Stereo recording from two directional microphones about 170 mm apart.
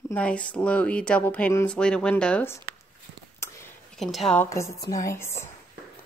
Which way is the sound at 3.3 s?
15° left (ahead or behind).